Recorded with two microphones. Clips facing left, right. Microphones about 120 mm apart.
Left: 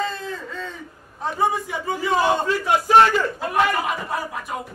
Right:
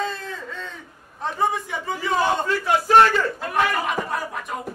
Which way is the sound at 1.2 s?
5° left (ahead or behind).